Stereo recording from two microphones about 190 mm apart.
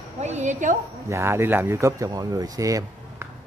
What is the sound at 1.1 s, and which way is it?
Speech, 10° right (ahead or behind).